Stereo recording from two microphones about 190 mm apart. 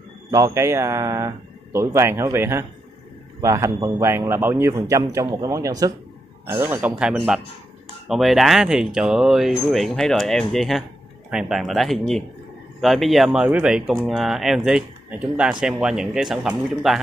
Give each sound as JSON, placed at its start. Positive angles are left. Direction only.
{"t": 0.3, "sound": "a man's voice", "side_deg": -15}